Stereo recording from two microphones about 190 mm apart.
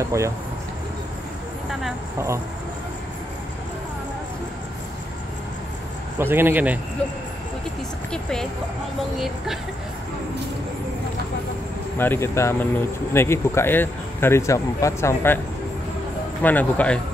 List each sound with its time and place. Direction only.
0.0 s a man's voice: 15° right (ahead or behind)
1.7 s speech: centre (ahead or behind)
2.1 s a man's voice: 15° right (ahead or behind)
6.1 s a man's voice: 10° right (ahead or behind)
8.1 s speech: 5° left (ahead or behind)
12.0 s speech: 15° left (ahead or behind)
16.4 s speech: 10° left (ahead or behind)